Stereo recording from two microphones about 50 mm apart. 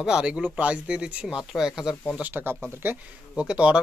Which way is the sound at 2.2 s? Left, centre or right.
Right.